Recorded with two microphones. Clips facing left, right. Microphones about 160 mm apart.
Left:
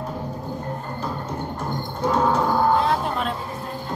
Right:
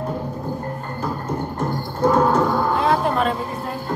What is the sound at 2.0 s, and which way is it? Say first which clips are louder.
Music: right 4 dB; 55° right (ahead or behind).